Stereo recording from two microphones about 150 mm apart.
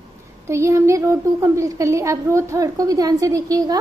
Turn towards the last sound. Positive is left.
turn(degrees=-25)  # may be behind; listen again after turning